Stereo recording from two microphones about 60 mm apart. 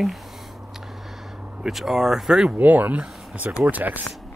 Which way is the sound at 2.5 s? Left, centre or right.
Right.